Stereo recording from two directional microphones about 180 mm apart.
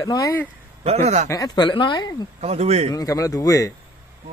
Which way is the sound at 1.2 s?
20° left (ahead or behind).